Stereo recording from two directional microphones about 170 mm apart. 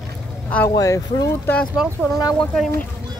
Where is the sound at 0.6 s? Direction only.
20° left (ahead or behind).